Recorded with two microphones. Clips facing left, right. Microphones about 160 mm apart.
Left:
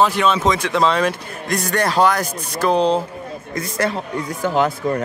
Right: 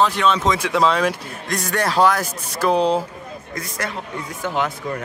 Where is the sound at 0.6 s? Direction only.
5° right (ahead or behind).